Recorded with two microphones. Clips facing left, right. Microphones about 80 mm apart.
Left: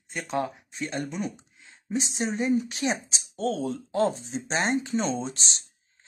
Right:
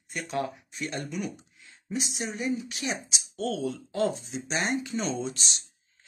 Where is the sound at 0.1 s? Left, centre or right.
Left.